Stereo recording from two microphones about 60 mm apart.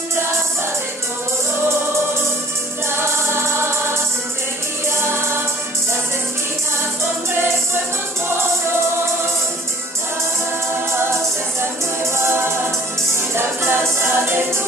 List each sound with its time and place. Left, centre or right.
3.0 s music: right
5.0 s music: right
13.1 s music: right